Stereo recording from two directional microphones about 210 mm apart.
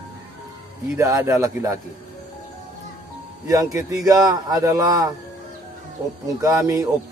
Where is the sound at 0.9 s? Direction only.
15° right (ahead or behind).